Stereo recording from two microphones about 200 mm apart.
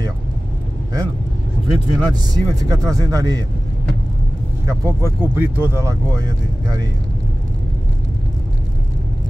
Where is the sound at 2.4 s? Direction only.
20° right (ahead or behind).